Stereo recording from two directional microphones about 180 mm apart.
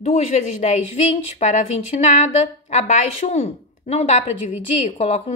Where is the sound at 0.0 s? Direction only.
35° left (ahead or behind).